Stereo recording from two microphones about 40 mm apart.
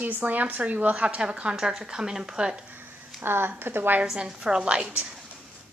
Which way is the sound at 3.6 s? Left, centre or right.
Right.